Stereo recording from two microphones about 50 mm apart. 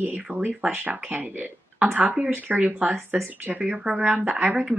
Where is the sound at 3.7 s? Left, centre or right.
Centre.